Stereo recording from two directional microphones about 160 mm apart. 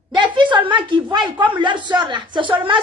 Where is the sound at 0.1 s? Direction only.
30° right (ahead or behind).